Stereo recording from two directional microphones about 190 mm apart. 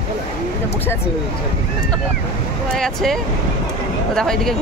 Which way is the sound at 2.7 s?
Centre (ahead or behind).